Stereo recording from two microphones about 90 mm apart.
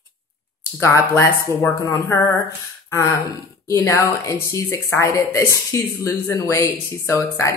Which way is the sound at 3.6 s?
35° left (ahead or behind).